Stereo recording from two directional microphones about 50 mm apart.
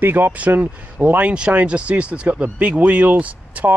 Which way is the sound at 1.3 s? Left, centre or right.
Right.